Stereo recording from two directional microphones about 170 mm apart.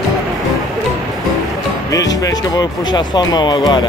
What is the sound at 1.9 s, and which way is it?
Speech, 20° left (ahead or behind).